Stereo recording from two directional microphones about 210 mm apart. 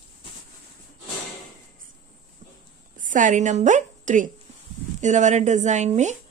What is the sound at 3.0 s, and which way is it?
A woman's voice, 40° right (ahead or behind).